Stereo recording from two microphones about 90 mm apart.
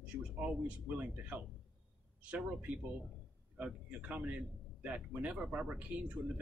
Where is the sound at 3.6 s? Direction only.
15° right (ahead or behind).